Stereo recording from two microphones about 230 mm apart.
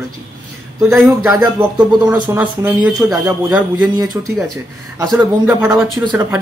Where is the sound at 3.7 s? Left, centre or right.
Centre.